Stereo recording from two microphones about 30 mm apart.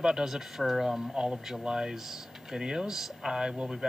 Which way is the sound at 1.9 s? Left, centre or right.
Centre.